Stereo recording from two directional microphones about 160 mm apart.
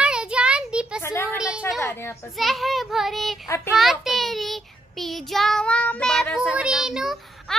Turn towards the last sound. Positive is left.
turn(degrees=0)  # may be behind; listen again after turning